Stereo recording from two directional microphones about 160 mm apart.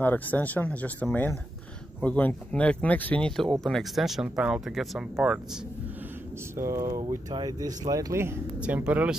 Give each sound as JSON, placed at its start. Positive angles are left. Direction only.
{"t": 0.0, "sound": "speech", "side_deg": 10}
{"t": 6.5, "sound": "speech", "side_deg": -20}